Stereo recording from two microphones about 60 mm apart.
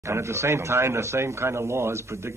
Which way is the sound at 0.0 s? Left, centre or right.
Right.